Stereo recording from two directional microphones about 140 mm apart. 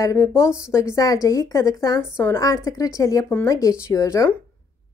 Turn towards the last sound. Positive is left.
turn(degrees=20)  # may be behind; listen again after turning